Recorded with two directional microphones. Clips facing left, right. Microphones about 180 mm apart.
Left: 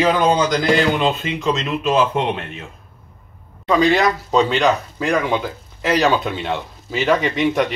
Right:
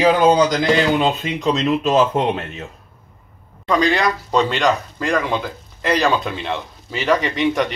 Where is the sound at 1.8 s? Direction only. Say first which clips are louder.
Right 1 dB; 40° right (ahead or behind).